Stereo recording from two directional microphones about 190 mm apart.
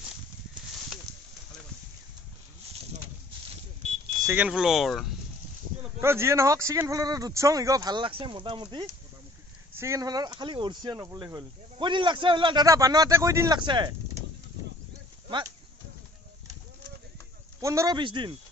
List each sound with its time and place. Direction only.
4.2 s speech: 10° right (ahead or behind)
5.8 s speech: 15° right (ahead or behind)
17.6 s speech: 15° right (ahead or behind)